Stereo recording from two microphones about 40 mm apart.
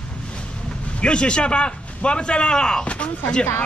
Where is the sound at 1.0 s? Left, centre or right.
Left.